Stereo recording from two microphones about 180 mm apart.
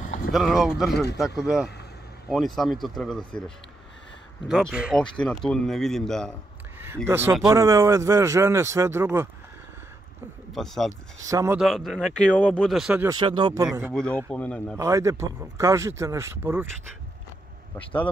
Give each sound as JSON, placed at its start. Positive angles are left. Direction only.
{"t": 0.0, "sound": "a sound", "side_deg": 50}
{"t": 0.3, "sound": "speech", "side_deg": 0}
{"t": 2.2, "sound": "speech", "side_deg": 0}
{"t": 7.1, "sound": "a man's voice", "side_deg": -15}
{"t": 10.5, "sound": "speech", "side_deg": 0}
{"t": 11.2, "sound": "a man's voice", "side_deg": -20}
{"t": 11.5, "sound": "speech", "side_deg": 0}
{"t": 13.1, "sound": "speech", "side_deg": -25}
{"t": 13.7, "sound": "a man's voice", "side_deg": -10}
{"t": 14.3, "sound": "speech", "side_deg": 5}
{"t": 14.8, "sound": "a man's voice", "side_deg": -15}